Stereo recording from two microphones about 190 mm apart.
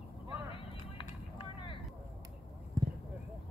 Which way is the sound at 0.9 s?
25° left (ahead or behind).